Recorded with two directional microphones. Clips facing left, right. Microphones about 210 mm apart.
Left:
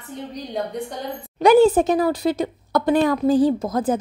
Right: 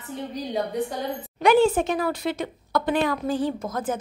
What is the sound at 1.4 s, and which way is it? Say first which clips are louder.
Speech: left 5 dB; 40° left (ahead or behind).